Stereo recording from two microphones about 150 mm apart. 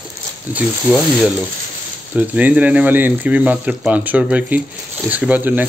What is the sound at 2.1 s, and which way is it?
Speech, 10° right (ahead or behind).